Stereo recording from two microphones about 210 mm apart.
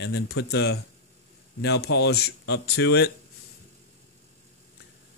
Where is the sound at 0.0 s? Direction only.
55° left (ahead or behind).